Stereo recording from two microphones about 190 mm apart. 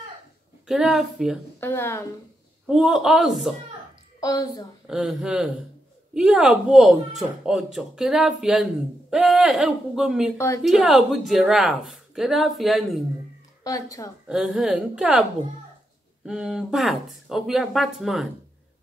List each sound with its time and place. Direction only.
0.7 s speech: 5° right (ahead or behind)
1.6 s speech: 10° left (ahead or behind)
2.6 s speech: centre (ahead or behind)
4.2 s a woman's voice: 20° left (ahead or behind)
4.8 s speech: 5° right (ahead or behind)
10.3 s speech: 15° left (ahead or behind)
10.6 s speech: centre (ahead or behind)
13.7 s speech: 20° left (ahead or behind)
14.2 s speech: 5° right (ahead or behind)
16.3 s speech: 5° right (ahead or behind)